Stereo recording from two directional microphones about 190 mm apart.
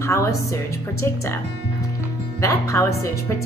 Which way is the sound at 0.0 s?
15° left (ahead or behind).